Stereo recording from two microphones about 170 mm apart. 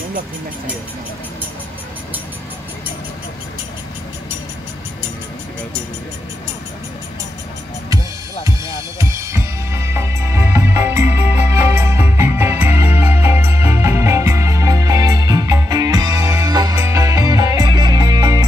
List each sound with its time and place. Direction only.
8.5 s drum kit: 20° right (ahead or behind)